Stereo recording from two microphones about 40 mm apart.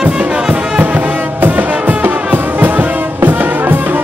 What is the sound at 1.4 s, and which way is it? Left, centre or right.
Music, right.